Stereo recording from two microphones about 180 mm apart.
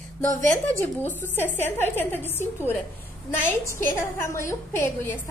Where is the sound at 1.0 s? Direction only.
10° left (ahead or behind).